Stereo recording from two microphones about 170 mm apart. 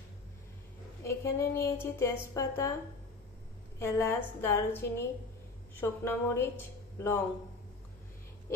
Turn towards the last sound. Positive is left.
turn(degrees=15)  # may be behind; listen again after turning